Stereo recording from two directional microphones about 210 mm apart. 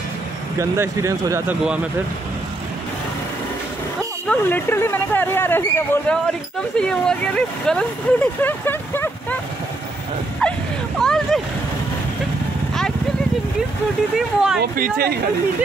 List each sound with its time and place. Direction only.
0.6 s speech: 15° right (ahead or behind)
4.3 s speech: 10° left (ahead or behind)
10.4 s a sound: 5° left (ahead or behind)
14.1 s speech: centre (ahead or behind)
14.6 s speech: 45° right (ahead or behind)